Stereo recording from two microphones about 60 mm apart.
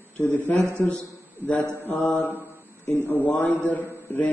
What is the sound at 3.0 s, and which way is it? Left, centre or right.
A man's voice, left.